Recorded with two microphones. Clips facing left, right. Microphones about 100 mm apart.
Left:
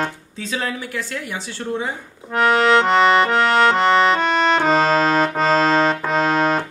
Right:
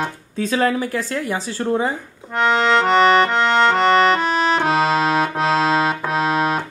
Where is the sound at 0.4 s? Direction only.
45° right (ahead or behind).